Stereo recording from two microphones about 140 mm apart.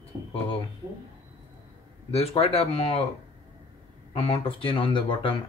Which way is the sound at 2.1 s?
45° left (ahead or behind).